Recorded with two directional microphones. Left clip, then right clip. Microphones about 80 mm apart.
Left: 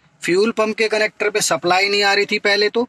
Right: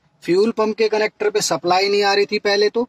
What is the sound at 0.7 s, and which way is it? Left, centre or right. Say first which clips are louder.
Speech: even; centre.